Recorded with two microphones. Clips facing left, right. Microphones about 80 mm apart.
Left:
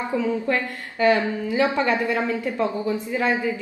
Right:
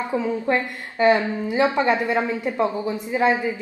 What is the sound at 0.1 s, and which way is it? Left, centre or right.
A woman's voice, right.